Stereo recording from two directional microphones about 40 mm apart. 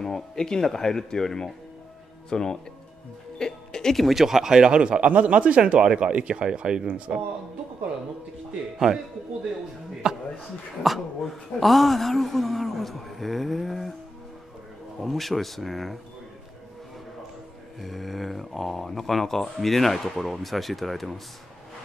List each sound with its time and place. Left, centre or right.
0.0 s speech: centre
3.3 s music: centre
3.9 s a man's voice: centre
8.7 s a man's voice: centre
10.0 s a man's voice: centre
10.8 s speech: centre
15.0 s speech: centre
17.7 s speech: centre